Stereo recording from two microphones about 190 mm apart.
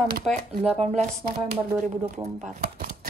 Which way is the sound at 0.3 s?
40° right (ahead or behind).